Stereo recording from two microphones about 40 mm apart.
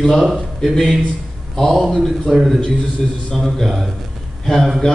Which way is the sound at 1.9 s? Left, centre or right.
Centre.